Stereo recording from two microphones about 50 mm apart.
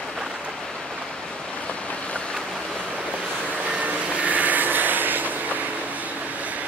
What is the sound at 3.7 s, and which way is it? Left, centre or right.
Vehicle, right.